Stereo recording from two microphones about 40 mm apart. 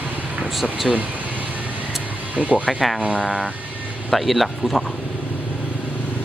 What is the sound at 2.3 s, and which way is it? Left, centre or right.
Speech, right.